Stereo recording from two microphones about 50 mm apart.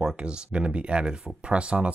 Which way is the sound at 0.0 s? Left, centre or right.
Centre.